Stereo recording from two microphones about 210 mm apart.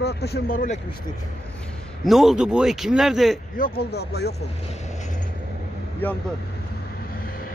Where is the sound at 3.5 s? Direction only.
45° left (ahead or behind).